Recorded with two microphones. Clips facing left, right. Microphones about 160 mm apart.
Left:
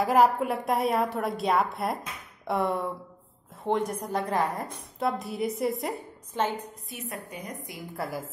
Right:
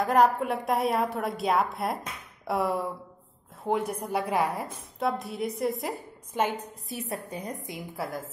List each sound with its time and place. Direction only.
0.0 s a woman's voice: centre (ahead or behind)
6.4 s a woman's voice: 15° right (ahead or behind)
6.9 s a woman's voice: 35° right (ahead or behind)
7.9 s a woman's voice: centre (ahead or behind)